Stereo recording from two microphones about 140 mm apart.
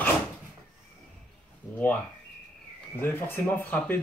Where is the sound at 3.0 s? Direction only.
15° left (ahead or behind).